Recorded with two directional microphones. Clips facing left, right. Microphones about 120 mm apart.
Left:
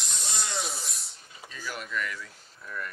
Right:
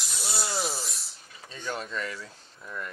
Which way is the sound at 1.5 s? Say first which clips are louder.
Right 3 dB; 30° right (ahead or behind).